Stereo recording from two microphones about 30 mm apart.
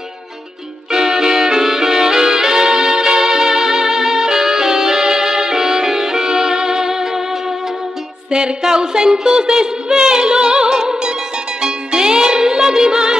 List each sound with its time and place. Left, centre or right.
0.9 s music: centre
8.3 s music: right
8.6 s a sound: right
11.6 s music: right